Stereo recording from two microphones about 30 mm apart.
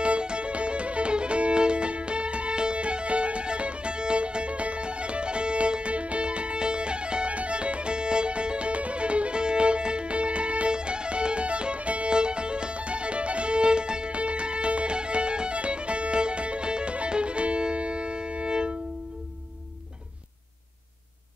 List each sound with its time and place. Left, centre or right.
0.0 s music: right
10.7 s music: right
12.1 s music: right